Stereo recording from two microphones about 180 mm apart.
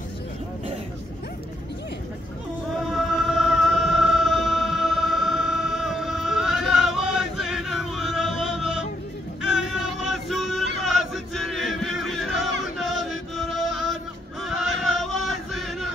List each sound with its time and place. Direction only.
2.9 s music: centre (ahead or behind)
9.4 s male singing: centre (ahead or behind)
12.7 s music: centre (ahead or behind)
14.4 s a sound: centre (ahead or behind)